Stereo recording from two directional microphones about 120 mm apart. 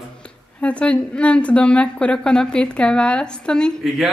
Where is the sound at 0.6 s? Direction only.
10° left (ahead or behind).